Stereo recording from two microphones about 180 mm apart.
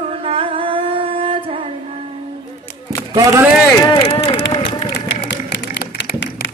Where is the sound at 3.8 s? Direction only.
20° left (ahead or behind).